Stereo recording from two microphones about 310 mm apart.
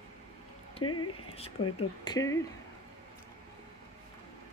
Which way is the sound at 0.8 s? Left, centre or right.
Left.